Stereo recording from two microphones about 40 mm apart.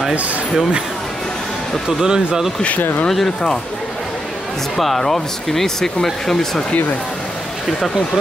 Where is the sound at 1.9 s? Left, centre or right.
Centre.